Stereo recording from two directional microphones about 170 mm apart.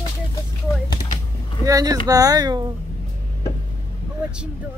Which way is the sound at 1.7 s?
20° right (ahead or behind).